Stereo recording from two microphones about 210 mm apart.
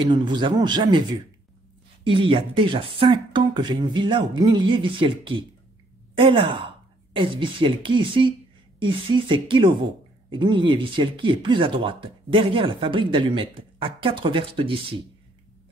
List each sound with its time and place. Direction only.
0.0 s speech: 20° right (ahead or behind)
2.0 s speech: 25° right (ahead or behind)